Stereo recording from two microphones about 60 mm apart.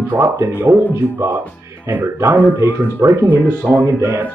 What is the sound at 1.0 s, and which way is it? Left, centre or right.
Speech, left.